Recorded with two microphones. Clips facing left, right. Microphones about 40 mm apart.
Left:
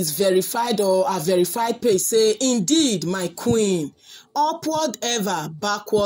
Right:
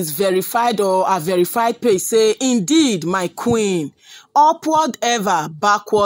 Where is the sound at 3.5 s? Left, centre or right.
Right.